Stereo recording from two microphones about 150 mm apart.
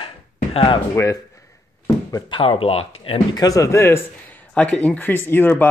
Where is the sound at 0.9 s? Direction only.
20° left (ahead or behind).